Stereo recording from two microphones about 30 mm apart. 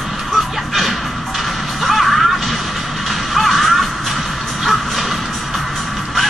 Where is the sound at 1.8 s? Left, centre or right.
Centre.